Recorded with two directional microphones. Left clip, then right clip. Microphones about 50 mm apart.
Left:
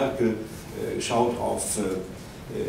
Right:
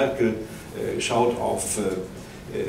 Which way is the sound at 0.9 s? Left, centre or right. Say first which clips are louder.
Right 2 dB; right.